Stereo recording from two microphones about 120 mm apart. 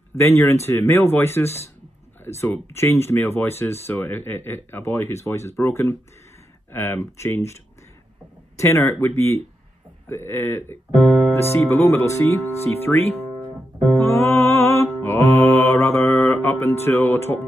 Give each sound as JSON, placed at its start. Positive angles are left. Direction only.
{"t": 0.1, "sound": "speech", "side_deg": 20}
{"t": 11.0, "sound": "music", "side_deg": 0}
{"t": 11.3, "sound": "speech", "side_deg": 20}
{"t": 14.0, "sound": "mantra", "side_deg": 20}
{"t": 16.8, "sound": "speech", "side_deg": 20}